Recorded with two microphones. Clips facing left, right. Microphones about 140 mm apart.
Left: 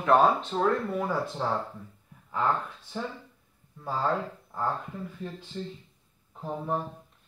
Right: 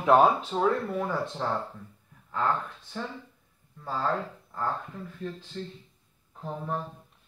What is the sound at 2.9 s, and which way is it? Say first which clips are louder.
Speech: left 1 dB; 10° left (ahead or behind).